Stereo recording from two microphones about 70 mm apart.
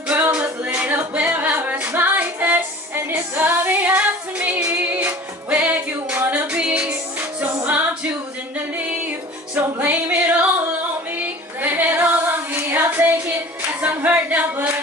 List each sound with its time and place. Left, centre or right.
0.1 s music: centre
6.5 s music: centre
9.8 s music: right